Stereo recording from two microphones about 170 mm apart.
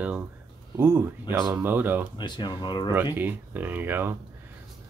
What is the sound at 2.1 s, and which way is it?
Speech, 25° left (ahead or behind).